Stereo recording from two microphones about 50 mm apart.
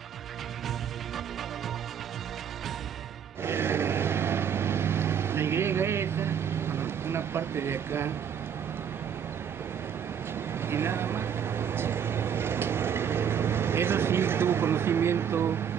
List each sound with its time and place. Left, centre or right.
3.4 s vehicle: right
10.6 s vehicle: right